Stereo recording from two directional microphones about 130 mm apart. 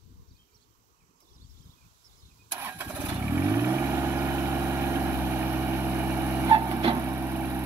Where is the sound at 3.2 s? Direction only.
20° right (ahead or behind).